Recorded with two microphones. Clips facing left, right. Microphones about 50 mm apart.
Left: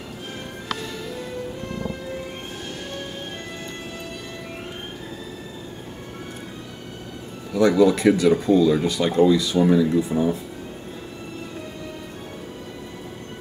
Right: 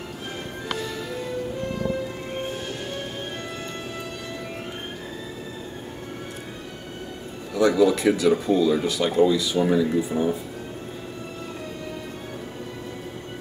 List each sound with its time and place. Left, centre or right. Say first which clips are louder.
7.5 s speech: left 2 dB; centre